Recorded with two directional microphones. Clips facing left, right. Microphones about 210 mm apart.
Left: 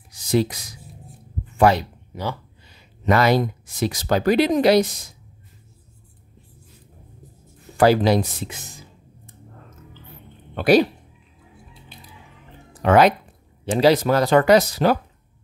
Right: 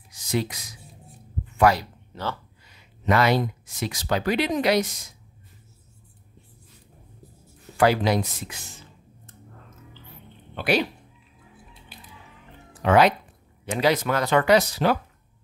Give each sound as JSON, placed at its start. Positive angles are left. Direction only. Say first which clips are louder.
{"t": 0.1, "sound": "a sound", "louder": "left 6 dB", "side_deg": 35}
{"t": 1.6, "sound": "speech", "louder": "left 3 dB", "side_deg": 25}
{"t": 2.1, "sound": "speech", "louder": "left 3 dB", "side_deg": 10}
{"t": 2.7, "sound": "speech", "louder": "left 3 dB", "side_deg": 40}
{"t": 7.7, "sound": "speech", "louder": "left 4 dB", "side_deg": 35}
{"t": 10.5, "sound": "speech", "louder": "left 8 dB", "side_deg": 40}
{"t": 12.8, "sound": "speech", "louder": "left 3 dB", "side_deg": 45}
{"t": 13.7, "sound": "speech", "louder": "left 6 dB", "side_deg": 35}